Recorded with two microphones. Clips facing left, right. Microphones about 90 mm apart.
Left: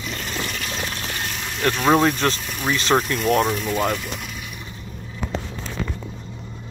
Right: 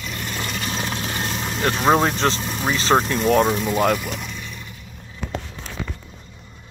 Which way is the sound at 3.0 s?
30° right (ahead or behind).